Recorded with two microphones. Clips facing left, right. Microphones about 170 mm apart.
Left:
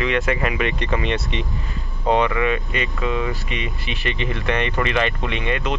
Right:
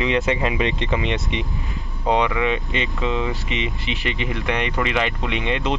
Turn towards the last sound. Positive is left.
turn(degrees=-15)  # may be behind; listen again after turning